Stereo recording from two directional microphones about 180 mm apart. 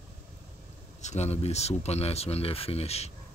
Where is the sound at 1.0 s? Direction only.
40° left (ahead or behind).